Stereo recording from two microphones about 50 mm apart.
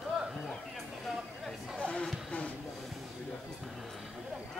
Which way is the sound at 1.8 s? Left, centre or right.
Left.